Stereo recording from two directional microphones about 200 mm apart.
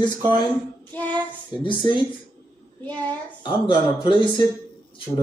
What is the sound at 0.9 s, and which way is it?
Speech, 10° left (ahead or behind).